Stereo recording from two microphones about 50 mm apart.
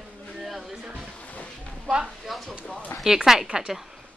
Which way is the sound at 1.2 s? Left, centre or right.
Left.